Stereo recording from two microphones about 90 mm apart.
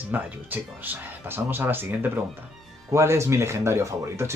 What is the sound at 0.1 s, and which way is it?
Speech, 20° right (ahead or behind).